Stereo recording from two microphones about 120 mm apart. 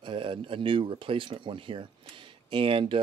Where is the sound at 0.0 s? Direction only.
45° right (ahead or behind).